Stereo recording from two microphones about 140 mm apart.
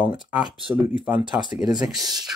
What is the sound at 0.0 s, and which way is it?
Speech, 10° right (ahead or behind).